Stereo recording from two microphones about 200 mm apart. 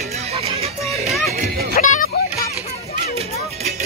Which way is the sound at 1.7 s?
40° left (ahead or behind).